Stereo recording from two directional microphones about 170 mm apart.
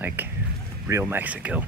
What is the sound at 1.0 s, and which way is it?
Speech, 10° right (ahead or behind).